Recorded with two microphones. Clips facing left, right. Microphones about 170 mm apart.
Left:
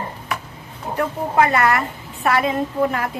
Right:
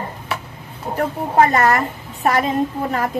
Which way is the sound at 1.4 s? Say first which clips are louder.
Right 2 dB; 40° right (ahead or behind).